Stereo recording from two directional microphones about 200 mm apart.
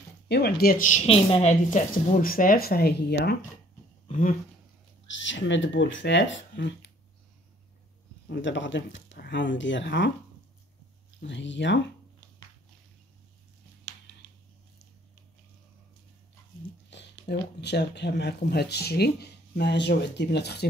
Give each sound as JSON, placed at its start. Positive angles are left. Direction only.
{"t": 0.3, "sound": "speech", "side_deg": 55}
{"t": 4.1, "sound": "speech", "side_deg": 40}
{"t": 5.0, "sound": "speech", "side_deg": 65}
{"t": 8.3, "sound": "speech", "side_deg": 65}
{"t": 11.1, "sound": "speech", "side_deg": 65}
{"t": 16.9, "sound": "speech", "side_deg": 55}